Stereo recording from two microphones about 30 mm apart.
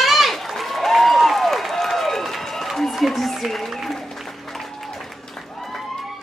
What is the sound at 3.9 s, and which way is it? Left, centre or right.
Music, centre.